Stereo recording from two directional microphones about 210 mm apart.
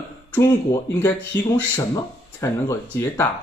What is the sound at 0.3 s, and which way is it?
Speech, 15° left (ahead or behind).